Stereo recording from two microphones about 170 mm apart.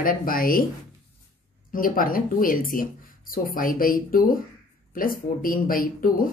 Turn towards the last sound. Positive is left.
turn(degrees=55)  # may be behind; listen again after turning